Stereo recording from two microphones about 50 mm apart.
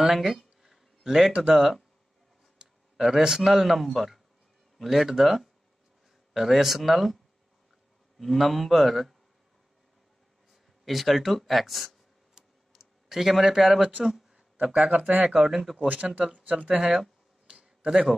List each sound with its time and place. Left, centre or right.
0.0 s a sound: centre
1.3 s speech: right
3.0 s a man's voice: centre
8.2 s a man's voice: centre
10.5 s speech: centre
12.4 s a sound: centre
14.9 s speech: right
15.4 s a man's voice: centre
16.3 s speech: right
16.6 s speech: centre
17.5 s a sound: centre